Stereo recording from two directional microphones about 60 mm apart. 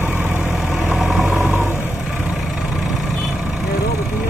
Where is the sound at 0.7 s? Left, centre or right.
Centre.